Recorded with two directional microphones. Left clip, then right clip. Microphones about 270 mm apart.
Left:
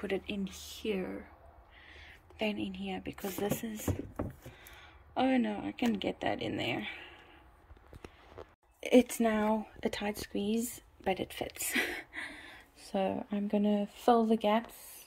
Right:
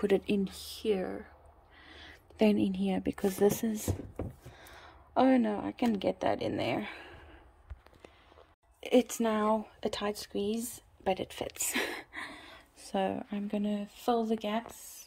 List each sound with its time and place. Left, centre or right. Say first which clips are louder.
0.0 s speech: right 7 dB; right
3.0 s speech: right 10 dB; right
3.4 s speech: right 6 dB; right
5.1 s speech: right 4 dB; centre
8.8 s speech: left 1 dB; centre